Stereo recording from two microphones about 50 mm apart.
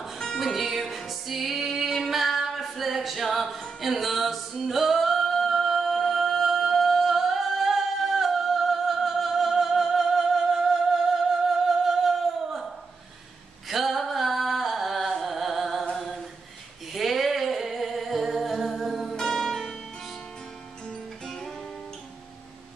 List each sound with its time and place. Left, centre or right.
0.4 s music: centre
3.8 s singing: centre
13.7 s singing: centre
16.0 s a capella: centre
16.9 s humming: centre
19.2 s music: centre
21.3 s music: centre